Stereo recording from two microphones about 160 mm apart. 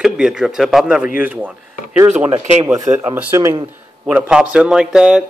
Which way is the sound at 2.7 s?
20° right (ahead or behind).